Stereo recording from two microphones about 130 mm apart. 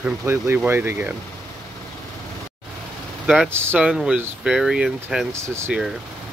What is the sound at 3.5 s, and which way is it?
Speech, 20° right (ahead or behind).